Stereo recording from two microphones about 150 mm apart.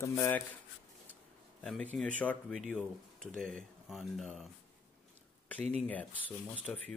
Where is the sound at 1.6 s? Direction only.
5° left (ahead or behind).